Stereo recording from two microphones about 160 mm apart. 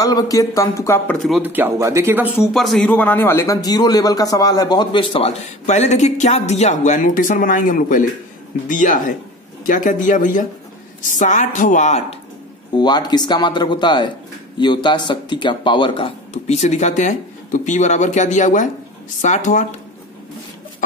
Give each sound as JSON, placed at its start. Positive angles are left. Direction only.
{"t": 0.0, "sound": "speech", "side_deg": 20}
{"t": 1.4, "sound": "speech", "side_deg": -10}
{"t": 2.5, "sound": "a man's voice", "side_deg": 0}
{"t": 12.7, "sound": "speech", "side_deg": 25}